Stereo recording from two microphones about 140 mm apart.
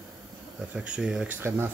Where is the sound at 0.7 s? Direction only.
5° right (ahead or behind).